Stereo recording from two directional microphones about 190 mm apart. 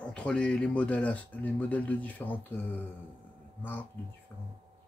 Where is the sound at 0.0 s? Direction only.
5° left (ahead or behind).